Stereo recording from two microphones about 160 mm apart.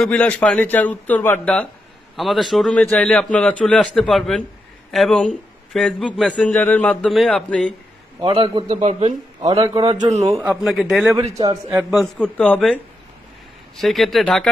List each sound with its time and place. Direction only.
0.0 s a man's voice: 10° left (ahead or behind)
8.2 s a man's voice: 35° right (ahead or behind)
9.8 s a man's voice: 30° right (ahead or behind)
10.3 s a man's voice: 10° right (ahead or behind)
11.3 s a man's voice: 20° right (ahead or behind)
11.9 s a man's voice: 5° left (ahead or behind)